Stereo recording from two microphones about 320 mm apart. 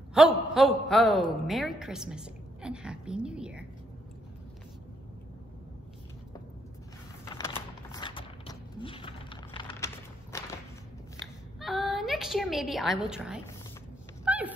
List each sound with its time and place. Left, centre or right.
0.2 s a woman's voice: centre
7.2 s typing: centre
8.7 s a sound: centre
10.3 s whip: centre
11.6 s a woman's voice: centre
14.2 s dog: centre